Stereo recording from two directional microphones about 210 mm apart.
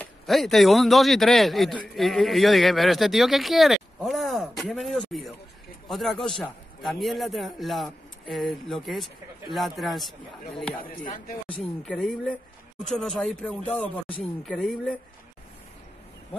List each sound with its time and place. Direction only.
0.0 s speech: centre (ahead or behind)
10.8 s speech: 40° left (ahead or behind)
11.4 s speech: 5° left (ahead or behind)